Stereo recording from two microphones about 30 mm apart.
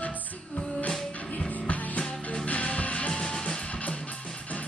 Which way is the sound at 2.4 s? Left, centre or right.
Left.